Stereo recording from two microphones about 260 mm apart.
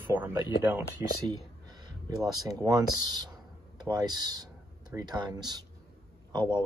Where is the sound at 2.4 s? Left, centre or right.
Centre.